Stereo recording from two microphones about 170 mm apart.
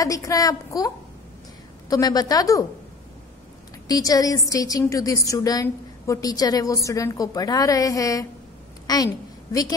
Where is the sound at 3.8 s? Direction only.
20° left (ahead or behind).